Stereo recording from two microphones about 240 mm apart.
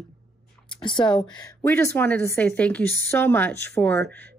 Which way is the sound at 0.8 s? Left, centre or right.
Centre.